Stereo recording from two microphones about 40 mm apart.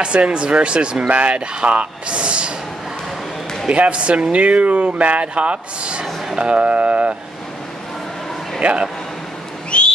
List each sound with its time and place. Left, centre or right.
0.0 s a man's voice: right
1.0 s a man's voice: right
3.6 s speech: right
8.5 s speech: right
9.7 s a sound: left